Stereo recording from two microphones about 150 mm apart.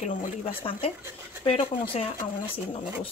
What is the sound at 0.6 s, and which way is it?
Speech, 35° left (ahead or behind).